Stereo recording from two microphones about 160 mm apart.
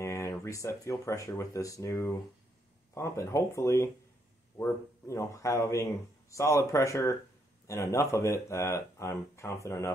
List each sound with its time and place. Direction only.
0.0 s speech: 15° left (ahead or behind)